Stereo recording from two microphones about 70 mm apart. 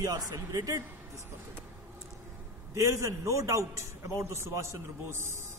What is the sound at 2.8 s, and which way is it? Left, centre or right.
A man's voice, right.